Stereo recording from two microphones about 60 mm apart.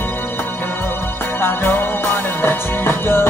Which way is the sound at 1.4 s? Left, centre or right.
Left.